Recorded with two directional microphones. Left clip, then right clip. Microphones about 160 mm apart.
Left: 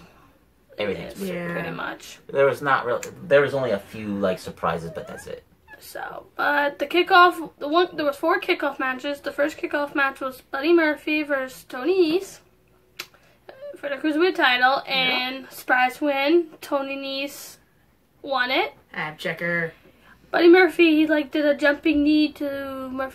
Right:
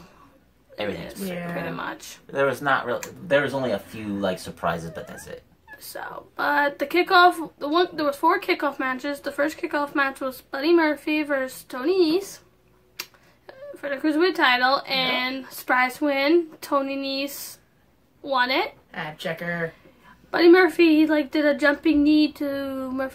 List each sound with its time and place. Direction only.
0.7 s a woman's voice: centre (ahead or behind)
1.2 s a woman's voice: 20° right (ahead or behind)
2.3 s speech: centre (ahead or behind)
6.0 s a woman's voice: 20° right (ahead or behind)
13.5 s a woman's voice: 20° right (ahead or behind)
18.9 s speech: 25° left (ahead or behind)
20.2 s a woman's voice: 20° right (ahead or behind)